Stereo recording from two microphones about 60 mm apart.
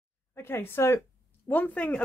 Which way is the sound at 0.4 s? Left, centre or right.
Left.